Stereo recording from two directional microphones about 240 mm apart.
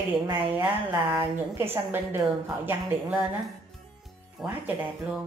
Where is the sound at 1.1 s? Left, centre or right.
Right.